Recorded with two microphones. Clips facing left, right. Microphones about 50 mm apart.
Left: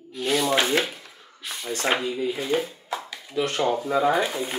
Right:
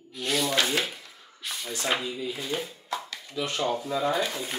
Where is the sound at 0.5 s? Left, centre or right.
Left.